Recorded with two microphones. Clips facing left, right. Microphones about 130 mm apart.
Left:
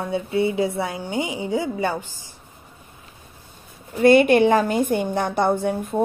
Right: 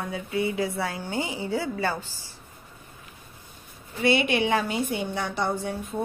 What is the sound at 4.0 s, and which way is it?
A woman's voice, 45° left (ahead or behind).